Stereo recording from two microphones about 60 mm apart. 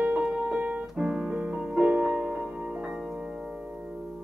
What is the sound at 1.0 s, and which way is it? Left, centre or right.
Piano, centre.